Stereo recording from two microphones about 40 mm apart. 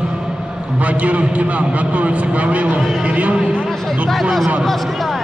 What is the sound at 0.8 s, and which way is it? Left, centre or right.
A man's voice, right.